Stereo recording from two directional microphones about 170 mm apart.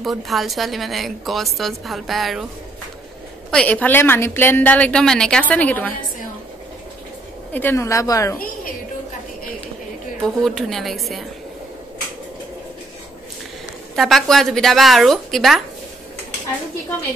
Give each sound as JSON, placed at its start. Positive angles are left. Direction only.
{"t": 0.0, "sound": "a woman's voice", "side_deg": 0}
{"t": 3.4, "sound": "a woman's voice", "side_deg": 5}
{"t": 7.5, "sound": "a woman's voice", "side_deg": 15}
{"t": 10.2, "sound": "a woman's voice", "side_deg": 0}
{"t": 13.9, "sound": "a woman's voice", "side_deg": 0}